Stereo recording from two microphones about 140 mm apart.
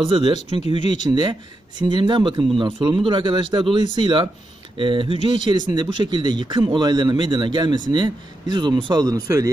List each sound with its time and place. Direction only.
0.0 s a man's voice: 40° right (ahead or behind)
1.1 s speech: 25° right (ahead or behind)
1.8 s a man's voice: 35° right (ahead or behind)